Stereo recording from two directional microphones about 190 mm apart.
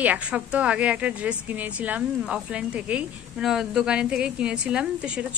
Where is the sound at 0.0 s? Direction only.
5° right (ahead or behind).